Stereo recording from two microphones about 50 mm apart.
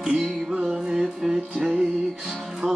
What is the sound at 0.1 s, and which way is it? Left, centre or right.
Music, right.